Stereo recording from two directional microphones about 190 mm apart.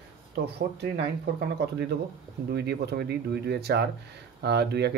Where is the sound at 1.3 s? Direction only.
60° right (ahead or behind).